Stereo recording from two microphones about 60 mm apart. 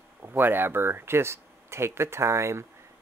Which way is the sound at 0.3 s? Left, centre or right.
Right.